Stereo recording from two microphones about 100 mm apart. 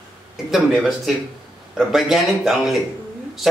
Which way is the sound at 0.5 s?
Centre (ahead or behind).